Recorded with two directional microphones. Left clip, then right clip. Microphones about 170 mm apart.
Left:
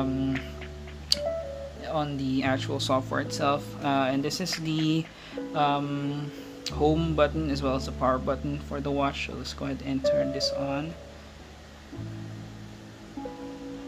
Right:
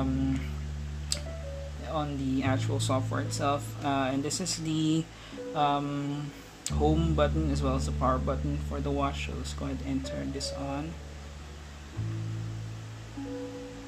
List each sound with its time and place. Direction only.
1.9 s speech: 5° left (ahead or behind)